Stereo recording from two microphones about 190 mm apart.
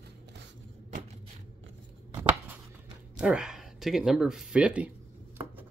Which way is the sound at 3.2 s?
5° right (ahead or behind).